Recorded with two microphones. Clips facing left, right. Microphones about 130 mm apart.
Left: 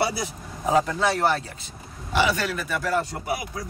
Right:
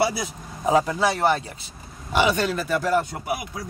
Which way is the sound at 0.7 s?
10° right (ahead or behind).